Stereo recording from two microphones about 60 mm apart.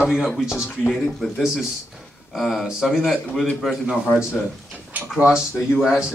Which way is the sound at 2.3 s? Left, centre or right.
Centre.